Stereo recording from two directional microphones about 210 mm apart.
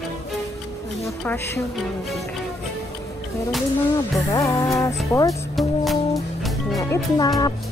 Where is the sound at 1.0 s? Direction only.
10° left (ahead or behind).